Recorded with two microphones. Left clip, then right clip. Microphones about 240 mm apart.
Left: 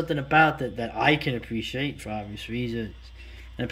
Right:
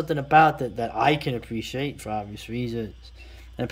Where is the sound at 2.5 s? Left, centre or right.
Right.